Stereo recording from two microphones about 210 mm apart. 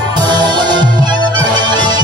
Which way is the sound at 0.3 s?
20° right (ahead or behind).